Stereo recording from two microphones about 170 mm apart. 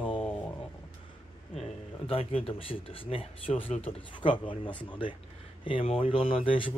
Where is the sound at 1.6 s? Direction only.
35° left (ahead or behind).